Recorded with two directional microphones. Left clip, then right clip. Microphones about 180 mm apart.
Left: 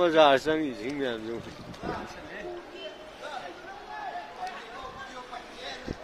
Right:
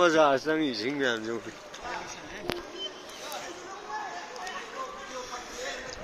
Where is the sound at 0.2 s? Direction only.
20° left (ahead or behind).